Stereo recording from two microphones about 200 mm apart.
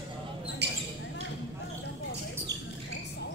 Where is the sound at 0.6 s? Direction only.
60° right (ahead or behind).